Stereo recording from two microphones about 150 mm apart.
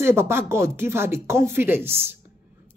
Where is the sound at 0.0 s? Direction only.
15° right (ahead or behind).